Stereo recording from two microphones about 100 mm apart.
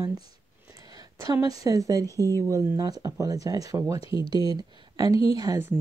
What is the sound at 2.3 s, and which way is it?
Speech, 35° right (ahead or behind).